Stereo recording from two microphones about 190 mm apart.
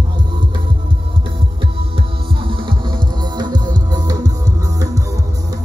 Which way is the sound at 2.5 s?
25° right (ahead or behind).